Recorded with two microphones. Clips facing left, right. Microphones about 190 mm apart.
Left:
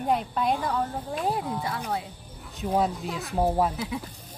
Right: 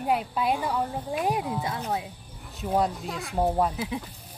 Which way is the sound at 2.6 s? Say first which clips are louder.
Even; centre (ahead or behind).